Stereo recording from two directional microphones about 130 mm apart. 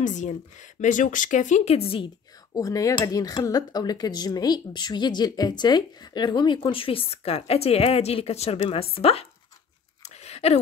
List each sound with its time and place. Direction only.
0.0 s speech: 70° left (ahead or behind); by 2.0 s 45° left (ahead or behind)
2.5 s speech: 25° left (ahead or behind); by 9.3 s 50° left (ahead or behind)
10.0 s a sound: 55° left (ahead or behind)